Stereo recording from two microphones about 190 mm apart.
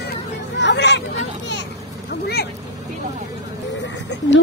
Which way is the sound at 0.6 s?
65° left (ahead or behind).